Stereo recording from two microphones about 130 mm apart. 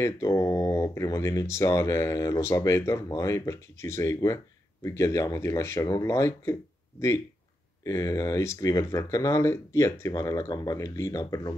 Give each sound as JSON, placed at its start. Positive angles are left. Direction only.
{"t": 0.0, "sound": "speech", "side_deg": 20}
{"t": 7.8, "sound": "speech", "side_deg": 25}